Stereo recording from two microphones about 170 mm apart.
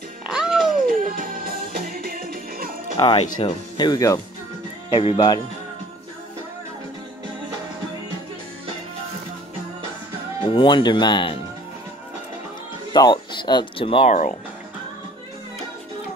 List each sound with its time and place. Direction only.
0.3 s music: 5° right (ahead or behind)
0.7 s music: 55° right (ahead or behind)
3.0 s speech: 30° left (ahead or behind)
10.4 s speech: 30° left (ahead or behind)
12.9 s speech: 25° left (ahead or behind)